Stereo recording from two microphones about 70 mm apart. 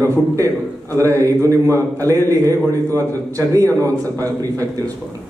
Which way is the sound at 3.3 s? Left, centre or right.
Right.